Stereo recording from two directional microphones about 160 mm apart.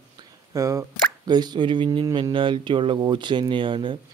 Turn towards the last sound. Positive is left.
turn(degrees=-30)  # may be behind; listen again after turning